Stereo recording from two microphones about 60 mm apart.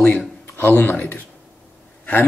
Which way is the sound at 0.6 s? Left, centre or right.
Left.